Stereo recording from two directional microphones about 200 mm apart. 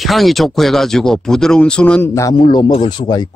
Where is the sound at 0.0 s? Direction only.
Centre (ahead or behind).